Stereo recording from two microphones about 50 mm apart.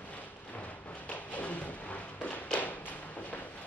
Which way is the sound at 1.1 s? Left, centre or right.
Left.